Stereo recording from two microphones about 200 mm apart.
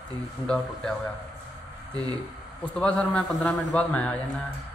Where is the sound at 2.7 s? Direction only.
5° left (ahead or behind).